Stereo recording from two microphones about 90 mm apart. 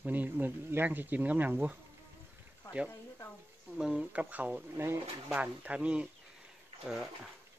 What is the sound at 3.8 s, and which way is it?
Speech, 10° right (ahead or behind).